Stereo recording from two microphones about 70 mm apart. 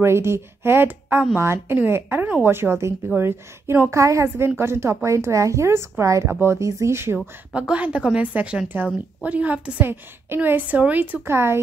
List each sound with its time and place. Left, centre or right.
0.0 s a woman's voice: right
3.9 s speech: right
7.5 s a woman's voice: centre
11.2 s speech: right